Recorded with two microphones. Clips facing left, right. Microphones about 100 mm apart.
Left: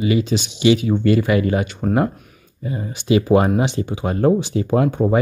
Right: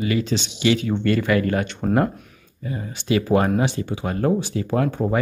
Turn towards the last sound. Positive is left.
turn(degrees=20)  # may be behind; listen again after turning